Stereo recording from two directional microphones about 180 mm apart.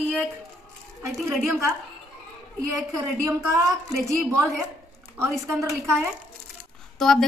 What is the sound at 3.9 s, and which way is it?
Speech, centre (ahead or behind).